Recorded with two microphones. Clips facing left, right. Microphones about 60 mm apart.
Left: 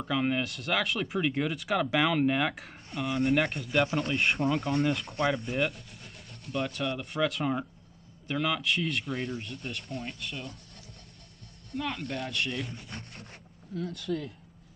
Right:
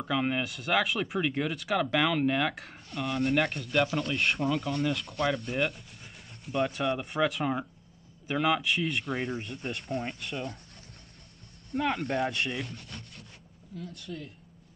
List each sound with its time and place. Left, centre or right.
0.0 s speech: centre
11.7 s speech: right
12.2 s speech: centre
12.9 s speech: left